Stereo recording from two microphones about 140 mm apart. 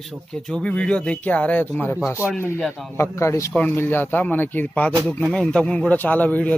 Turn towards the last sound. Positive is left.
turn(degrees=10)  # may be behind; listen again after turning